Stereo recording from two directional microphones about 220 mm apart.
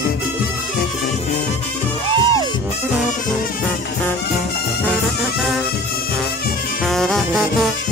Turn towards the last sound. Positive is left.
turn(degrees=0)  # may be behind; listen again after turning